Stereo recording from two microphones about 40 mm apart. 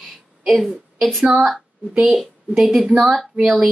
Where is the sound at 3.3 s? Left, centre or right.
Right.